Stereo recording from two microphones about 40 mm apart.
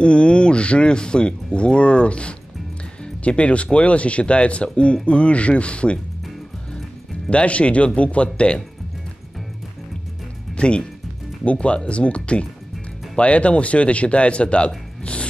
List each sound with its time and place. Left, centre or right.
0.0 s speech: left
7.2 s speech: left
10.6 s speech: left